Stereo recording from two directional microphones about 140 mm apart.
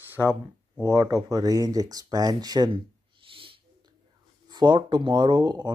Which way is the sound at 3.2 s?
40° right (ahead or behind).